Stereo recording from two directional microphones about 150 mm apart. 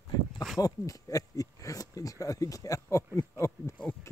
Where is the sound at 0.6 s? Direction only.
20° left (ahead or behind).